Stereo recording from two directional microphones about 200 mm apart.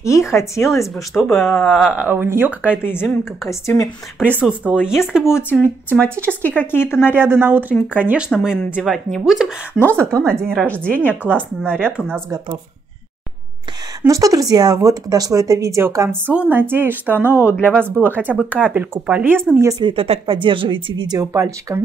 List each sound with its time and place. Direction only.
0.0 s a woman's voice: 15° left (ahead or behind)
1.6 s speech: centre (ahead or behind)
3.0 s a woman's voice: 15° left (ahead or behind)
4.2 s speech: 5° right (ahead or behind)
5.5 s a woman's voice: 10° left (ahead or behind)
7.2 s a woman's voice: 10° right (ahead or behind)
14.0 s speech: 15° right (ahead or behind)
17.2 s a woman's voice: 10° left (ahead or behind)
18.2 s speech: 5° right (ahead or behind)